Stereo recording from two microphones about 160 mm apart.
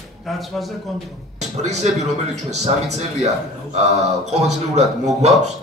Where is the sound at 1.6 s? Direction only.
45° right (ahead or behind).